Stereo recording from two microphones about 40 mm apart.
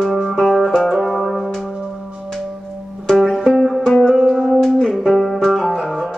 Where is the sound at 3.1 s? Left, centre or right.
Centre.